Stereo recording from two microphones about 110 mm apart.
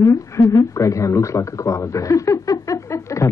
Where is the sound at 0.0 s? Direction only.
30° left (ahead or behind).